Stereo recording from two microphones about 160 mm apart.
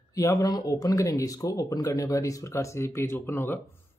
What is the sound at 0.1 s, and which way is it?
Speech, 20° left (ahead or behind).